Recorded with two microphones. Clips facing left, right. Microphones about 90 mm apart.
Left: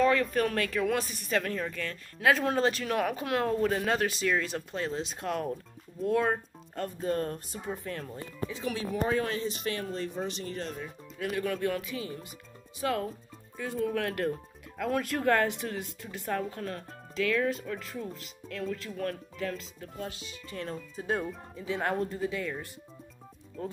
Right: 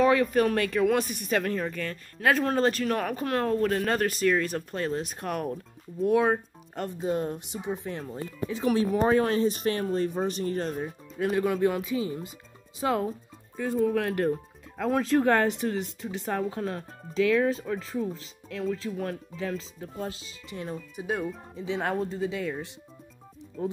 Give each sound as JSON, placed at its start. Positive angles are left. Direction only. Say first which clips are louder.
{"t": 0.0, "sound": "speech", "louder": "right 4 dB", "side_deg": -10}
{"t": 1.0, "sound": "speech", "louder": "right 7 dB", "side_deg": -60}
{"t": 1.3, "sound": "speech", "louder": "right 3 dB", "side_deg": -5}
{"t": 11.1, "sound": "speech", "louder": "right 6 dB", "side_deg": -30}
{"t": 13.6, "sound": "speech", "louder": "right 5 dB", "side_deg": -5}
{"t": 21.5, "sound": "speech", "louder": "right 1 dB", "side_deg": -20}